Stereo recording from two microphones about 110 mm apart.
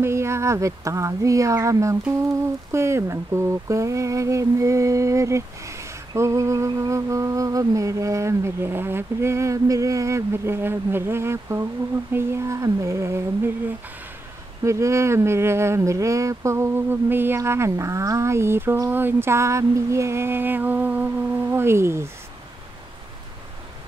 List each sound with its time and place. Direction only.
0.0 s humming: 25° right (ahead or behind)
14.6 s humming: 25° right (ahead or behind)